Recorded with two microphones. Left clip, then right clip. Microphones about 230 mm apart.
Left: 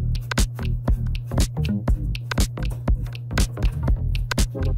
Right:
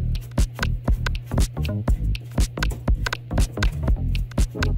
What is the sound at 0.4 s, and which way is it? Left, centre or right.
Music, centre.